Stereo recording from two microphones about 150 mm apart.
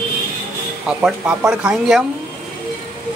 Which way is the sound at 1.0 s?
10° right (ahead or behind).